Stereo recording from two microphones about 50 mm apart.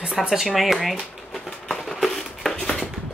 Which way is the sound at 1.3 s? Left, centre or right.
Centre.